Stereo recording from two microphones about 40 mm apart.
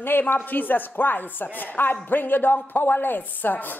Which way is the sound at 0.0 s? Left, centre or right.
Left.